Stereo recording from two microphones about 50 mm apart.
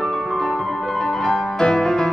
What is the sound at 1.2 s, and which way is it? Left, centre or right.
Music, centre.